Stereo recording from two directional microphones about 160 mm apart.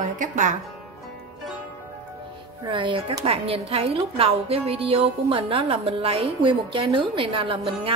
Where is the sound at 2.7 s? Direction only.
30° right (ahead or behind).